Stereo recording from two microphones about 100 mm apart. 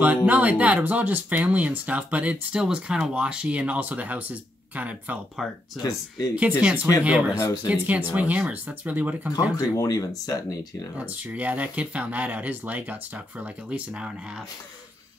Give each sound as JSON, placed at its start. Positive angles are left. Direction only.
{"t": 0.0, "sound": "speech", "side_deg": -15}
{"t": 5.8, "sound": "speech", "side_deg": 35}
{"t": 6.6, "sound": "speech", "side_deg": -15}
{"t": 9.6, "sound": "speech", "side_deg": 35}
{"t": 11.0, "sound": "speech", "side_deg": -15}